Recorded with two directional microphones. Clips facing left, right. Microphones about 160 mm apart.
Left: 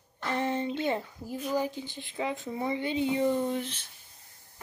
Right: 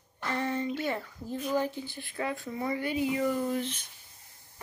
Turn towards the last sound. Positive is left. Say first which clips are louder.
# left 2 dB
turn(degrees=25)  # may be behind; listen again after turning